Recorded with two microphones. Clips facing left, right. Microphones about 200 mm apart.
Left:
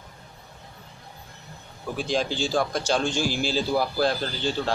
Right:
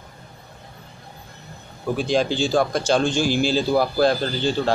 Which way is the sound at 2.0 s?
60° right (ahead or behind).